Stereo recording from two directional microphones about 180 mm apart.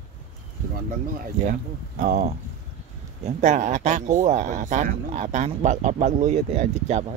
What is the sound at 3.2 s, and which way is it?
Speech, 40° right (ahead or behind).